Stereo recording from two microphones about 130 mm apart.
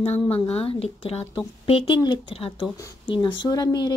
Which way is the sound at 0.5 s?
50° left (ahead or behind).